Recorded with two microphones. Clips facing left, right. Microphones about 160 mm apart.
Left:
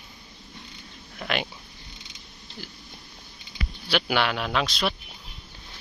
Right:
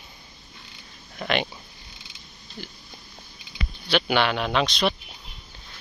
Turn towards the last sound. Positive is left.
turn(degrees=5)  # may be behind; listen again after turning